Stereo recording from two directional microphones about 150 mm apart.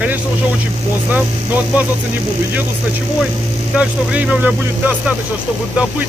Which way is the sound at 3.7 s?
10° right (ahead or behind).